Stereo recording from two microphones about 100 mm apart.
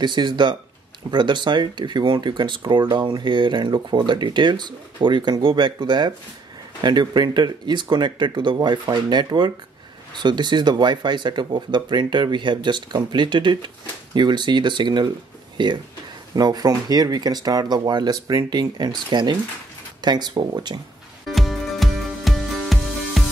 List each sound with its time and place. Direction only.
0.0 s speech: 50° right (ahead or behind)
21.3 s music: centre (ahead or behind)